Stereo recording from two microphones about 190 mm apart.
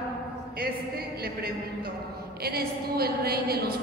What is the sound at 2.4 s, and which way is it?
A woman's voice, 55° right (ahead or behind).